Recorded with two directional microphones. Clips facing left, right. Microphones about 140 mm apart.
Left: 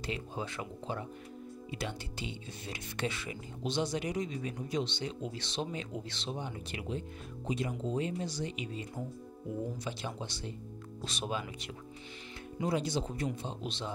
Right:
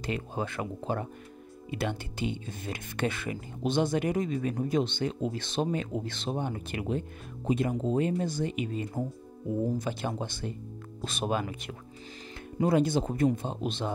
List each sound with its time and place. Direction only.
0.0 s speech: 55° right (ahead or behind)